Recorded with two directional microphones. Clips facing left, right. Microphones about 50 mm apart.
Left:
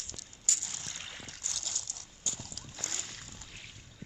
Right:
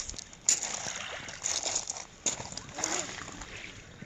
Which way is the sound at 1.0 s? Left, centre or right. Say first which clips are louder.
Right 6 dB; right.